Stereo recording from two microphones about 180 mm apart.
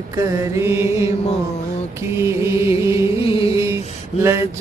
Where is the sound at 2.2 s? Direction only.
15° right (ahead or behind).